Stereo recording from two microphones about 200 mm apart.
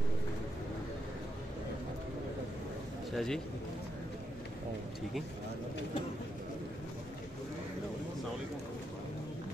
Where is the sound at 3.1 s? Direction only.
Centre (ahead or behind).